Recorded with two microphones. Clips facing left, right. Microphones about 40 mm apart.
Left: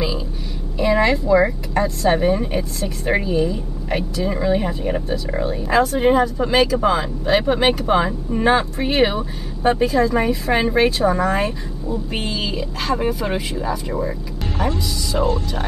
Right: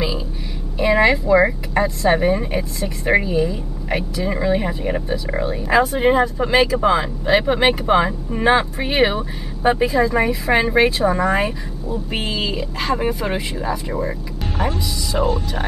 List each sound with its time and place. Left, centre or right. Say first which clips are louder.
0.7 s speech: right 2 dB; centre